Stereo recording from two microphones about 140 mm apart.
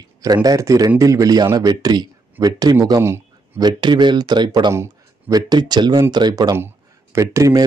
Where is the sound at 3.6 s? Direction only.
35° right (ahead or behind).